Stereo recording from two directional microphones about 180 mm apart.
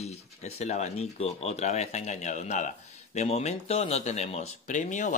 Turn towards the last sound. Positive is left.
turn(degrees=45)  # may be behind; listen again after turning